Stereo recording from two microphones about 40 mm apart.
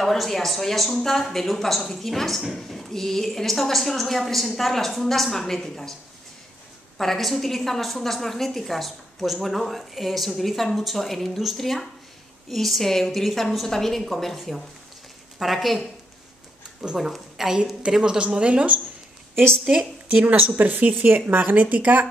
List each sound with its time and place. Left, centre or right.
0.0 s a woman's voice: centre
7.0 s a woman's voice: centre
14.0 s a woman's voice: centre
16.8 s speech: centre
17.9 s a woman's voice: right
20.1 s speech: right